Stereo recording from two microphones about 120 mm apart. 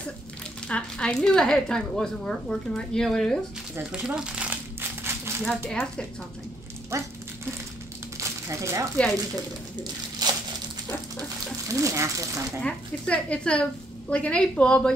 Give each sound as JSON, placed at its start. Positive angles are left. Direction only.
{"t": 0.7, "sound": "speech", "side_deg": 10}
{"t": 4.0, "sound": "rattle", "side_deg": -5}
{"t": 5.4, "sound": "speech", "side_deg": 5}
{"t": 6.9, "sound": "speech", "side_deg": -25}
{"t": 8.2, "sound": "a sound", "side_deg": -25}
{"t": 9.3, "sound": "speech", "side_deg": -35}
{"t": 11.7, "sound": "speech", "side_deg": -25}
{"t": 12.6, "sound": "speech", "side_deg": 10}